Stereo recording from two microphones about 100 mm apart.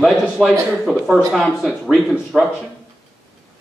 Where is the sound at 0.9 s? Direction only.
10° left (ahead or behind).